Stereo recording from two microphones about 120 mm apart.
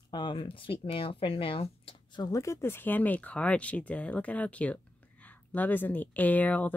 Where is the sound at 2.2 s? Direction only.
25° left (ahead or behind).